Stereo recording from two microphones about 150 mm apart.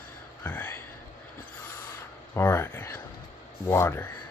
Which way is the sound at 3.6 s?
15° left (ahead or behind).